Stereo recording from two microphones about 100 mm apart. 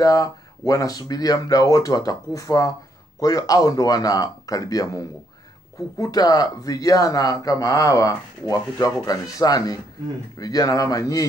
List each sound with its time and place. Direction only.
0.0 s speech: 35° left (ahead or behind)